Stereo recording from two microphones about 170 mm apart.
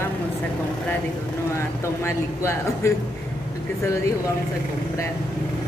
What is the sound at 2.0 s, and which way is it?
Speech, 15° left (ahead or behind).